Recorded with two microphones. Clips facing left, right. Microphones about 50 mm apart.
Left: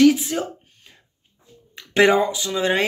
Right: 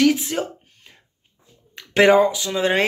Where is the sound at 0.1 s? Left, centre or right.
Right.